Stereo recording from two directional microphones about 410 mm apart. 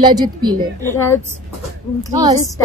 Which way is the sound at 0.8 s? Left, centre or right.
Centre.